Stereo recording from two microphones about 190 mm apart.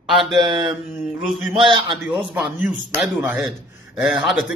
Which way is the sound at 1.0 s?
Centre (ahead or behind).